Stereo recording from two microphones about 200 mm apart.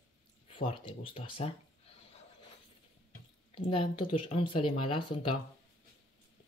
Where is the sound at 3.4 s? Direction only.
25° left (ahead or behind).